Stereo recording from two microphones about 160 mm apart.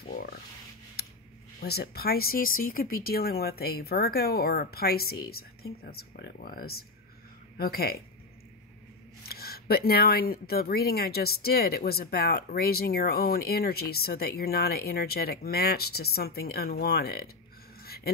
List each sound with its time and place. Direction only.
1.6 s speech: 75° left (ahead or behind)
9.3 s speech: 75° left (ahead or behind)
17.8 s a sound: 75° left (ahead or behind)